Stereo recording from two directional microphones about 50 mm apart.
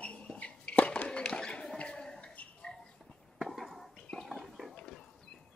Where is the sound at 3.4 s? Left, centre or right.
Centre.